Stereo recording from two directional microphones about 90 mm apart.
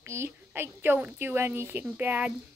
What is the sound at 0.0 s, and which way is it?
A child's voice, 30° right (ahead or behind).